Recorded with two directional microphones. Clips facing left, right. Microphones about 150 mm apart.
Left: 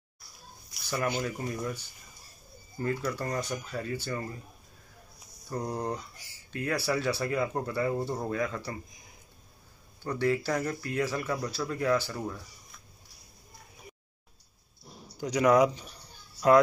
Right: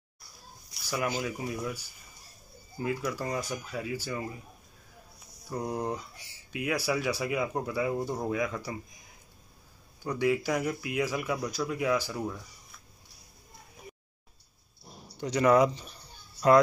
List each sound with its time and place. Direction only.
0.8 s speech: 5° right (ahead or behind)
5.5 s speech: 5° right (ahead or behind)
10.0 s speech: 10° right (ahead or behind)
15.1 s speech: 10° left (ahead or behind)